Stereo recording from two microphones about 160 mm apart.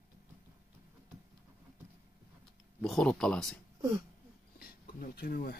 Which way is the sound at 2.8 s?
5° left (ahead or behind).